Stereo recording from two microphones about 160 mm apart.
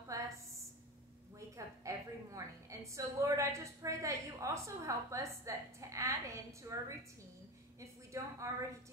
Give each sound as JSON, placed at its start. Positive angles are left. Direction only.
{"t": 0.1, "sound": "a sound", "side_deg": -20}
{"t": 1.9, "sound": "a woman's voice", "side_deg": -20}
{"t": 8.1, "sound": "a woman's voice", "side_deg": -20}